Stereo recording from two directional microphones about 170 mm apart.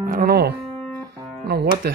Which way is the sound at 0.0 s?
65° right (ahead or behind).